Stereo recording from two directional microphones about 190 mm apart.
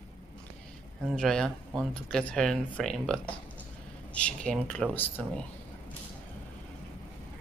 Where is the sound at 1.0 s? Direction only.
Centre (ahead or behind).